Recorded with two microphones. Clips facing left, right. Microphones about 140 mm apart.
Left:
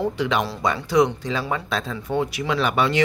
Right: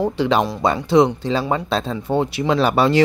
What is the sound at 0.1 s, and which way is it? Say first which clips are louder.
Speech: right 5 dB; 30° right (ahead or behind).